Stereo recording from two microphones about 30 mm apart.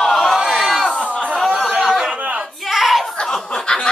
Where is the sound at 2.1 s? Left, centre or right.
Right.